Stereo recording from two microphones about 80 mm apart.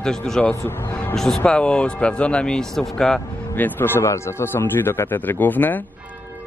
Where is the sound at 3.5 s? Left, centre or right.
Left.